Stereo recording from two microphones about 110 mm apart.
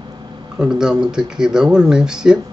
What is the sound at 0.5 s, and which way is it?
Speech, 5° right (ahead or behind).